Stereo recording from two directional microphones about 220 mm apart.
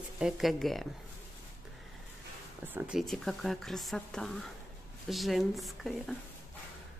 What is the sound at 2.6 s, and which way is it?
Speech, 5° right (ahead or behind).